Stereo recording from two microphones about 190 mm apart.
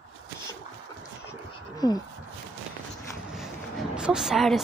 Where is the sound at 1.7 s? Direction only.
20° left (ahead or behind).